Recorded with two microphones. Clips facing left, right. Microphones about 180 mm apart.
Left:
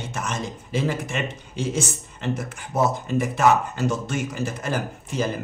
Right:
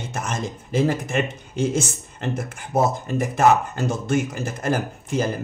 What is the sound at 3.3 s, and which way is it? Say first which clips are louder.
Speech: right 3 dB; 50° right (ahead or behind).